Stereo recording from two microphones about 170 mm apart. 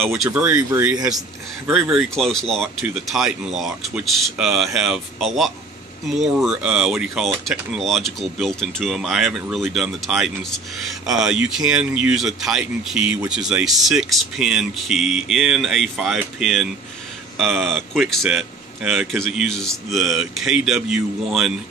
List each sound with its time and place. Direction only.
0.0 s speech: centre (ahead or behind)